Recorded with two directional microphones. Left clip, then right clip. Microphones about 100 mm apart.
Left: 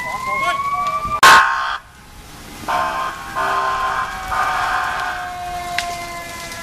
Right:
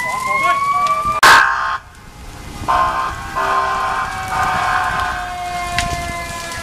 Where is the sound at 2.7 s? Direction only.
30° left (ahead or behind).